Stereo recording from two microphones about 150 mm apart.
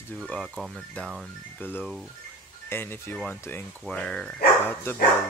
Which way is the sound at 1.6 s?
15° left (ahead or behind).